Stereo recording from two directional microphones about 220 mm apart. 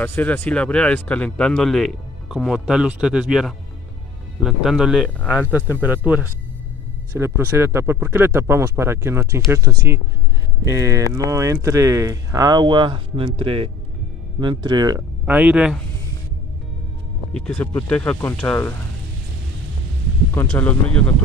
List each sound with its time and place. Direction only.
0.0 s speech: 10° left (ahead or behind); by 15.0 s 20° right (ahead or behind)
15.2 s speech: 5° right (ahead or behind)
17.3 s speech: 5° left (ahead or behind)
20.3 s speech: 10° left (ahead or behind)